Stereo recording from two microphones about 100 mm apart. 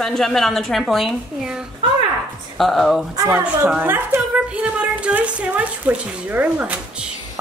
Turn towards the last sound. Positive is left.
turn(degrees=-15)  # may be behind; listen again after turning